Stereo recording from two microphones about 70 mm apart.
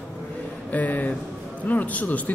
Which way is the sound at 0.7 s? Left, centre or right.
Left.